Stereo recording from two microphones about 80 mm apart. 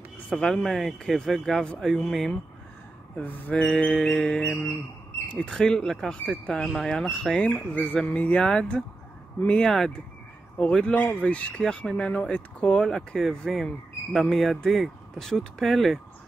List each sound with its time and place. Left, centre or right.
0.3 s speech: centre
3.2 s a sound: centre
3.6 s speech: centre